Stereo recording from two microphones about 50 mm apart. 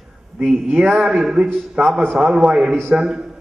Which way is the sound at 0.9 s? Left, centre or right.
Centre.